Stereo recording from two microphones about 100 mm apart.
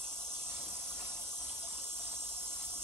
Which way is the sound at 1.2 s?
25° right (ahead or behind).